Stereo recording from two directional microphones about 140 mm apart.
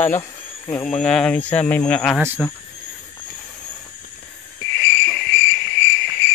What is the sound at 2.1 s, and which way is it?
Speech, 10° right (ahead or behind).